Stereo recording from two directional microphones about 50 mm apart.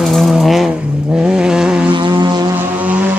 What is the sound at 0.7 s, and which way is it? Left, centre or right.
Vehicle, centre.